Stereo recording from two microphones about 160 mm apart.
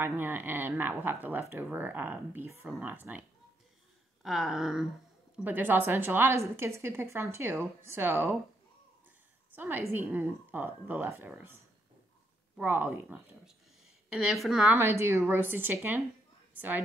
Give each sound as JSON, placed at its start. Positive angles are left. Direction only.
{"t": 0.0, "sound": "a woman's voice", "side_deg": -10}
{"t": 9.6, "sound": "speech", "side_deg": -10}
{"t": 12.5, "sound": "a woman's voice", "side_deg": -10}
{"t": 14.8, "sound": "speech", "side_deg": -15}